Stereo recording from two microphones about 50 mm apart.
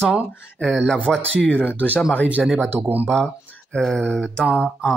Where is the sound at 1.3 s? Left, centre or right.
Left.